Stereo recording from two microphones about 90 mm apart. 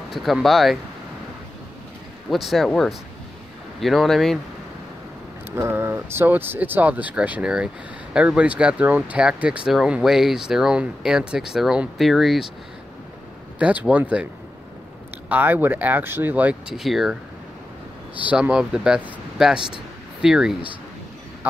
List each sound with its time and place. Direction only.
0.1 s speech: centre (ahead or behind)
2.2 s speech: centre (ahead or behind)
5.6 s speech: 25° right (ahead or behind); by 12.4 s centre (ahead or behind)
13.6 s speech: 15° right (ahead or behind)
16.6 s speech: 5° right (ahead or behind)
18.2 s speech: 15° right (ahead or behind)